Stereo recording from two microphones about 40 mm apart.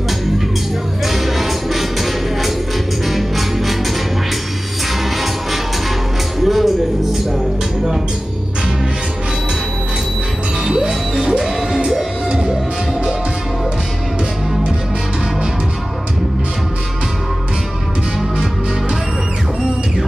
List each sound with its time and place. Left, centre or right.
1.0 s music: centre
6.4 s music: centre
10.6 s music: centre